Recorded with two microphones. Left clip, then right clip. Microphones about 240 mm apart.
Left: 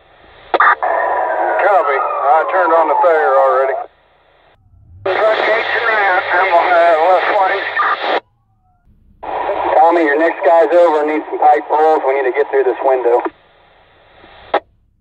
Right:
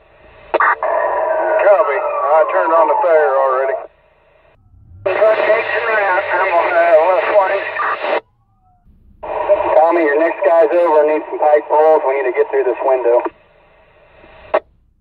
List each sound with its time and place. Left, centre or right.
0.2 s radio: left
5.0 s radio: left
9.2 s radio: left